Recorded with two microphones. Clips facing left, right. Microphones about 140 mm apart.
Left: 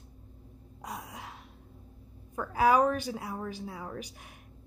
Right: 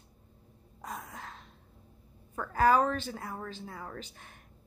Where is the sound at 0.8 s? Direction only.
15° left (ahead or behind).